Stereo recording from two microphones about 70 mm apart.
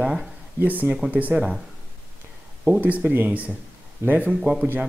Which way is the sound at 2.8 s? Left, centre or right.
Right.